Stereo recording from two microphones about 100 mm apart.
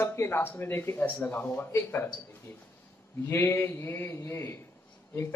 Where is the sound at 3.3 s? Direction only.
25° left (ahead or behind).